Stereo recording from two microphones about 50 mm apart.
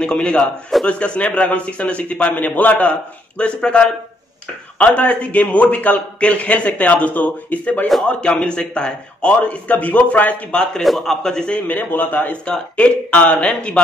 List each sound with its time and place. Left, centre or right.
0.0 s a man's voice: centre
8.0 s a man's voice: left
10.5 s a man's voice: centre
11.6 s a man's voice: left